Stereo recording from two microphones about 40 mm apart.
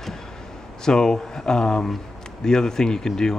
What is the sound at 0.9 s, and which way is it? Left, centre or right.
Speech, centre.